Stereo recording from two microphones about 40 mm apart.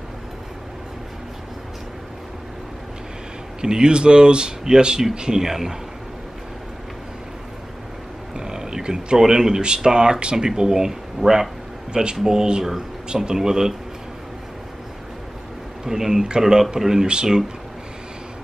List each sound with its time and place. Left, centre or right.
3.6 s speech: centre
8.4 s speech: centre
15.8 s speech: centre